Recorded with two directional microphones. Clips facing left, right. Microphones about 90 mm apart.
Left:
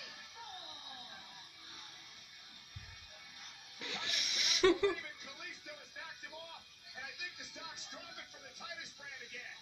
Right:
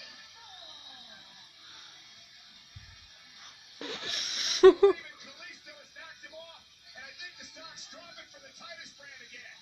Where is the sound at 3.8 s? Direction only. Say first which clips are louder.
Right 4 dB; 45° right (ahead or behind).